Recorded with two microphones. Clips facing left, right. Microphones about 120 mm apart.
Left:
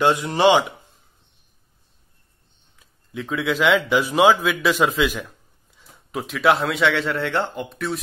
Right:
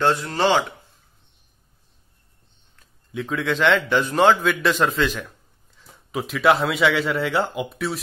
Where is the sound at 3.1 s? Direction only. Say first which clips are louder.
Even; centre (ahead or behind).